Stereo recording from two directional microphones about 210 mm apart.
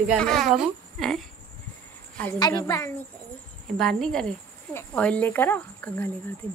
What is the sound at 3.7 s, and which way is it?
Speech, 5° left (ahead or behind).